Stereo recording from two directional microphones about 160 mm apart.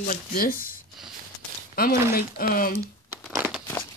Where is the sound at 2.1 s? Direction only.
65° left (ahead or behind).